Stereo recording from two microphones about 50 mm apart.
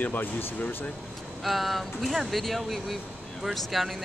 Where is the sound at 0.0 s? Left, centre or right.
Left.